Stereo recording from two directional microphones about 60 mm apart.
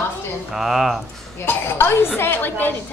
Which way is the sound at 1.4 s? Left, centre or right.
Left.